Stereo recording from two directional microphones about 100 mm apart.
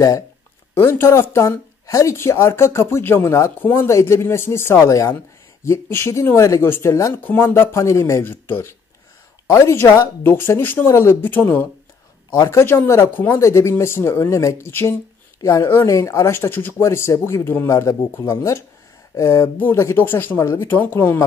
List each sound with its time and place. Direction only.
0.7 s speech: 25° left (ahead or behind)